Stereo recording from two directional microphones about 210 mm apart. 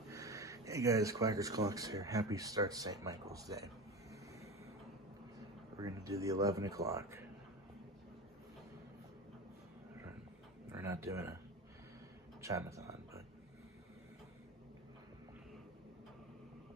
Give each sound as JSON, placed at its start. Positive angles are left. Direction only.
{"t": 0.1, "sound": "speech", "side_deg": -15}
{"t": 5.8, "sound": "speech", "side_deg": -15}
{"t": 10.7, "sound": "speech", "side_deg": -15}
{"t": 12.4, "sound": "a sound", "side_deg": -15}